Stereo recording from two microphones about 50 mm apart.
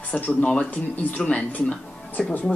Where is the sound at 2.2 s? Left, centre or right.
Centre.